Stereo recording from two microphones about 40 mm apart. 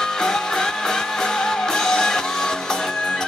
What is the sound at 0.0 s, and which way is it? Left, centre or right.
Music, centre.